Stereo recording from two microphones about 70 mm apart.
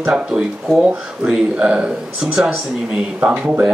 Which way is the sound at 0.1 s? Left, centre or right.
Centre.